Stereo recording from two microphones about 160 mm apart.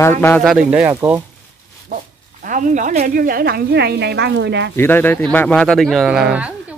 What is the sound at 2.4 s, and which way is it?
Speech, 55° right (ahead or behind).